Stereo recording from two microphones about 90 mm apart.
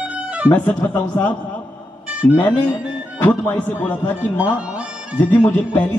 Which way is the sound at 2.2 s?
35° left (ahead or behind).